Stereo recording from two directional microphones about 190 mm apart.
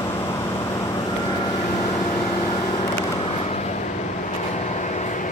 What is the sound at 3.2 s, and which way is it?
Vehicle, 35° left (ahead or behind).